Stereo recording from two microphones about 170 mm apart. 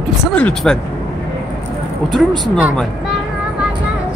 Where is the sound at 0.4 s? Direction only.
5° left (ahead or behind).